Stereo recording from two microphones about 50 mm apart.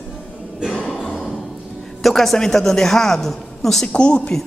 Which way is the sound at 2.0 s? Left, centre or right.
Centre.